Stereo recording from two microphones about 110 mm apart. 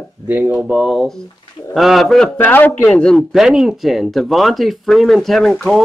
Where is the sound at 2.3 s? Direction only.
15° left (ahead or behind).